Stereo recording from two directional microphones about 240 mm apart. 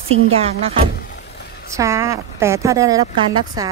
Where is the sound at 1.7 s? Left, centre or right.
Centre.